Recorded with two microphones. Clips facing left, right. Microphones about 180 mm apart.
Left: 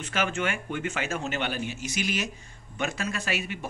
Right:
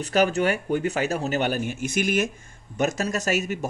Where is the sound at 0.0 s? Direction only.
40° right (ahead or behind).